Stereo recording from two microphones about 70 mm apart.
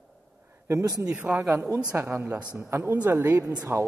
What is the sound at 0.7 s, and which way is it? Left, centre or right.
Speech, right.